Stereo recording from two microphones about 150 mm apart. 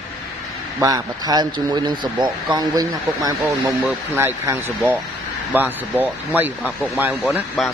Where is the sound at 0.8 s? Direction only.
25° right (ahead or behind).